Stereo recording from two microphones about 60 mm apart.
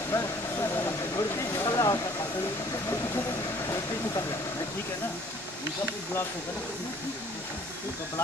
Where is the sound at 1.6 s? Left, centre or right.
Left.